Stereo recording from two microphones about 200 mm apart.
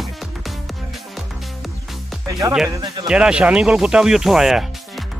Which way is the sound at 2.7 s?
20° right (ahead or behind).